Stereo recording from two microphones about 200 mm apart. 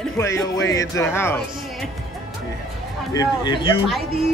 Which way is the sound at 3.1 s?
20° left (ahead or behind).